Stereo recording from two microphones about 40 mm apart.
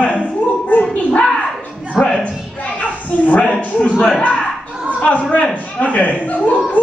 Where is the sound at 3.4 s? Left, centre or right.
Left.